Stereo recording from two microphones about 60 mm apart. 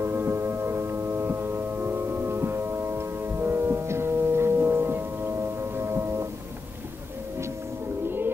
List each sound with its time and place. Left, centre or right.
0.0 s singing bowl: right